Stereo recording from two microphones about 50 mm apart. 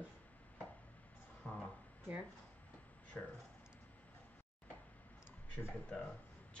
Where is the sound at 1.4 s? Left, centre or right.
Left.